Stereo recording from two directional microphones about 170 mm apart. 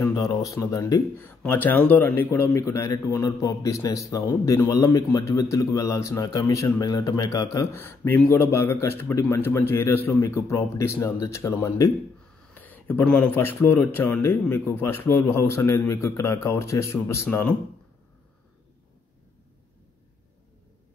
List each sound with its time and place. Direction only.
0.0 s a man's voice: 20° left (ahead or behind)